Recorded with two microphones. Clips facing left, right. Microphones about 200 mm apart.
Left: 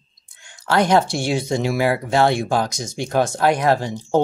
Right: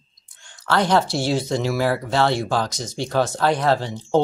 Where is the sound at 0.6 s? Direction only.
15° left (ahead or behind).